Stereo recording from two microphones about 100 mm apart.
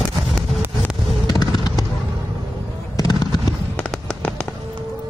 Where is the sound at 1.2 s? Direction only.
45° left (ahead or behind).